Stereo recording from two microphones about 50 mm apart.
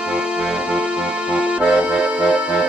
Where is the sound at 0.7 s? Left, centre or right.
Right.